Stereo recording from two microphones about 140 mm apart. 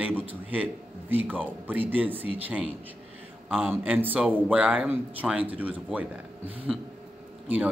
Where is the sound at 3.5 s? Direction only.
15° right (ahead or behind).